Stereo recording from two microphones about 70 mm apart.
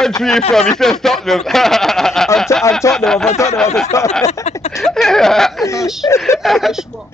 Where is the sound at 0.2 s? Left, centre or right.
Centre.